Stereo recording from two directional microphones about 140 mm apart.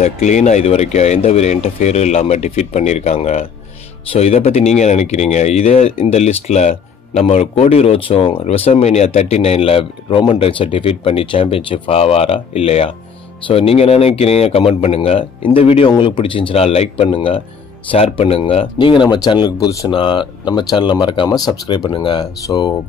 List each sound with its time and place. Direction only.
0.0 s speech: 55° left (ahead or behind); by 22.7 s 30° left (ahead or behind)